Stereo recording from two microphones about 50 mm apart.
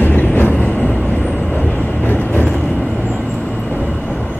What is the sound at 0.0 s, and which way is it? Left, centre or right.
Vehicle, left.